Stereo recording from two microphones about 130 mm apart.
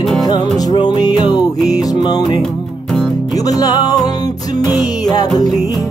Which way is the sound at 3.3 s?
30° left (ahead or behind).